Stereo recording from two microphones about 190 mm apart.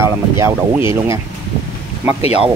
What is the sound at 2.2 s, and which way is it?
Speech, 30° left (ahead or behind).